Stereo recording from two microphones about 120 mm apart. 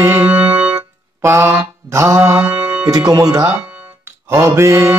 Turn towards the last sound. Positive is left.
turn(degrees=-25)  # may be behind; listen again after turning